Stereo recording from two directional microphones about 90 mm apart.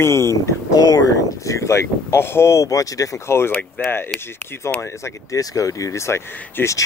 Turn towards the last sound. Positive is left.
turn(degrees=30)  # may be behind; listen again after turning